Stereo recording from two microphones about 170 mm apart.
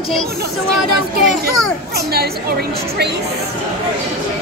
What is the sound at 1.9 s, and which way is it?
A woman's voice, 65° right (ahead or behind).